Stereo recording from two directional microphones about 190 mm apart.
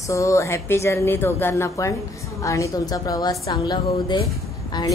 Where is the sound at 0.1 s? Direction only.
15° left (ahead or behind).